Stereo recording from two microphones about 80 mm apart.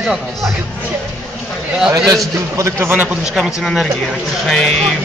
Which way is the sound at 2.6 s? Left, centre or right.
Right.